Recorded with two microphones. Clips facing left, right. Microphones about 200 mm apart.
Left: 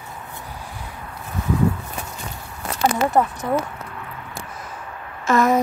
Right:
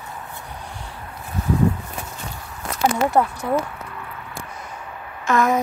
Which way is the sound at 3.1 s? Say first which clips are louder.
Even; 20° left (ahead or behind).